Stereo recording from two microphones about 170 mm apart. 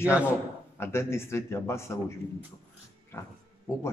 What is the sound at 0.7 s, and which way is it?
A man's voice, 15° left (ahead or behind).